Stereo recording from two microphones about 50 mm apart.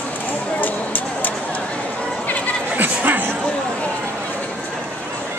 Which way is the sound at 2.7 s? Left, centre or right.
Right.